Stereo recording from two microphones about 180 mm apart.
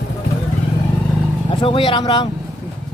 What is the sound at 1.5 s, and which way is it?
Speech, 30° left (ahead or behind).